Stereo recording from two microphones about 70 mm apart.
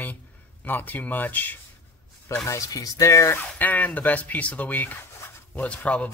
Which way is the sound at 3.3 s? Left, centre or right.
Left.